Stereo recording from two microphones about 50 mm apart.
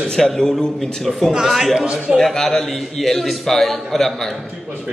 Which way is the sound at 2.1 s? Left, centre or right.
Centre.